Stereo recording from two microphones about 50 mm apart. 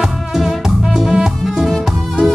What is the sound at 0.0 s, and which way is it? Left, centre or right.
Music, centre.